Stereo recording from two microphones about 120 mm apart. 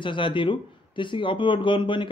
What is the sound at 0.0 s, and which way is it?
Speech, 45° left (ahead or behind).